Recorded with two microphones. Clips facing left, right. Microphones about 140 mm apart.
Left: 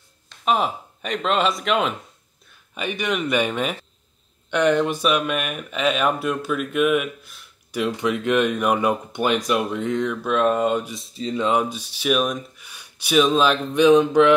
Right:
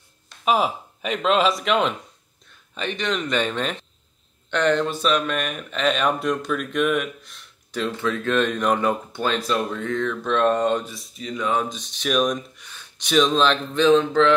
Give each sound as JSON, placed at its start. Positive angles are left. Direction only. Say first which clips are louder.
{"t": 0.5, "sound": "speech", "louder": "right 1 dB", "side_deg": 0}
{"t": 11.0, "sound": "speech", "louder": "left 4 dB", "side_deg": 30}
{"t": 11.5, "sound": "speech", "louder": "left 3 dB", "side_deg": 10}